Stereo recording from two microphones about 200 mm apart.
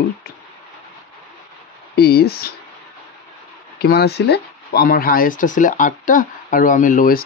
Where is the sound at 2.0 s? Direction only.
55° left (ahead or behind).